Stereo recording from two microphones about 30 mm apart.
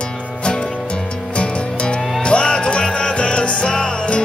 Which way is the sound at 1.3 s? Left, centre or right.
Left.